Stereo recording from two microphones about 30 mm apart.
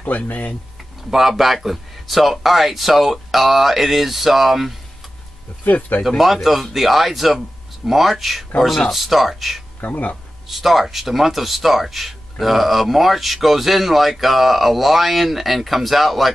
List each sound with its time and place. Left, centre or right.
0.0 s speech: left
1.1 s speech: centre
5.7 s speech: left
6.0 s speech: centre
8.5 s speech: centre
8.9 s speech: centre
9.8 s speech: left
10.5 s speech: centre